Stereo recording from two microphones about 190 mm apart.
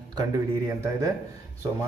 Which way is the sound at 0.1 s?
20° right (ahead or behind).